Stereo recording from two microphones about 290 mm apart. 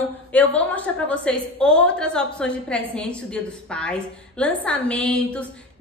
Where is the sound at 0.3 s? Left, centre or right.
Centre.